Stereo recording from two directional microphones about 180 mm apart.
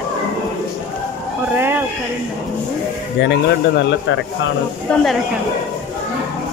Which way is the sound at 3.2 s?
75° left (ahead or behind).